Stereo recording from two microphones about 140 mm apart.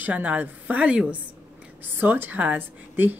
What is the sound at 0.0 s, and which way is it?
A woman's voice, 10° right (ahead or behind).